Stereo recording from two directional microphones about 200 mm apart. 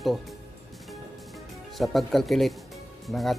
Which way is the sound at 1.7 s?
Centre (ahead or behind).